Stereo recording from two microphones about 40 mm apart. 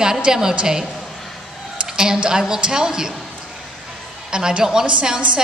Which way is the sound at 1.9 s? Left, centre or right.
Centre.